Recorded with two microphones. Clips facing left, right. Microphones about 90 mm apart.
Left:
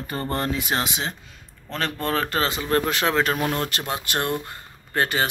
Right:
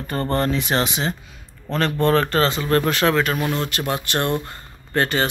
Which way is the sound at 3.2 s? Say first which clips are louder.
Right 1 dB; 35° left (ahead or behind).